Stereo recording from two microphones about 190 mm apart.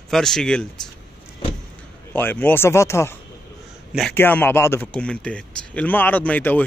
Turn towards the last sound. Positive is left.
turn(degrees=10)  # may be behind; listen again after turning